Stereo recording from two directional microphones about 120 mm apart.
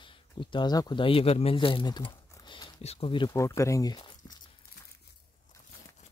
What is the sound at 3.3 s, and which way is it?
Speech, 25° left (ahead or behind).